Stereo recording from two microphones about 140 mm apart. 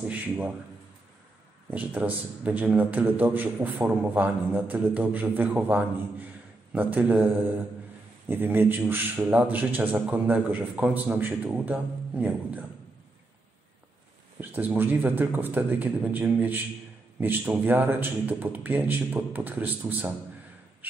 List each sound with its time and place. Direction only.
1.7 s a man's voice: 10° right (ahead or behind)
8.3 s a man's voice: 15° right (ahead or behind)
14.4 s a man's voice: 15° right (ahead or behind)